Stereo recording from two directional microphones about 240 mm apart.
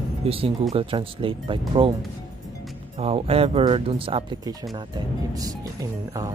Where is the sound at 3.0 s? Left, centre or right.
Right.